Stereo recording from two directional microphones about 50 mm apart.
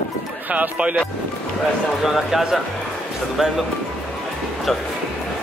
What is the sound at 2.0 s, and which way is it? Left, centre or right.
Speech, centre.